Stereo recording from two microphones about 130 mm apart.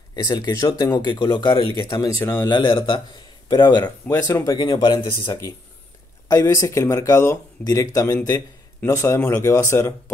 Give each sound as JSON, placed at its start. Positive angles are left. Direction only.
{"t": 0.1, "sound": "speech", "side_deg": 30}
{"t": 2.1, "sound": "speech", "side_deg": 15}
{"t": 2.4, "sound": "speech", "side_deg": 35}
{"t": 6.2, "sound": "speech", "side_deg": 25}